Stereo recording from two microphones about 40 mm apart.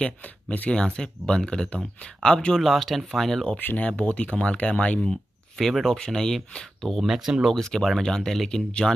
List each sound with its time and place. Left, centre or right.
0.2 s speech: left
0.7 s speech: centre
2.6 s speech: centre
3.5 s speech: left
5.6 s speech: centre
7.0 s speech: centre
7.5 s speech: centre